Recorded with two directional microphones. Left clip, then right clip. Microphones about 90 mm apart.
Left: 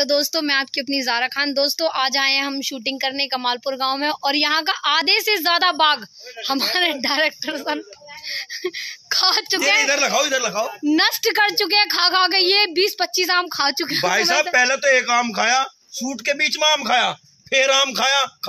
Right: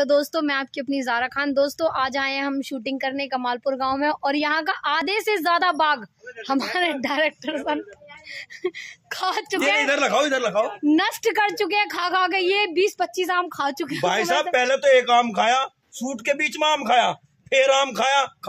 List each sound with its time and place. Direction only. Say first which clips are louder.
0.0 s a woman's voice: left 1 dB; 30° right (ahead or behind); by 9.6 s 10° right (ahead or behind)
9.8 s speech: left 1 dB; 55° right (ahead or behind)
11.0 s a woman's voice: left 6 dB; 10° right (ahead or behind)
14.0 s speech: left 2 dB; 50° right (ahead or behind)
16.9 s speech: even; 20° right (ahead or behind)
17.5 s speech: left 1 dB; 35° right (ahead or behind)